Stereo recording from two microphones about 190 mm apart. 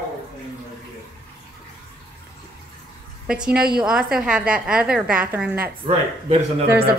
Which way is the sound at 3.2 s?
5° right (ahead or behind).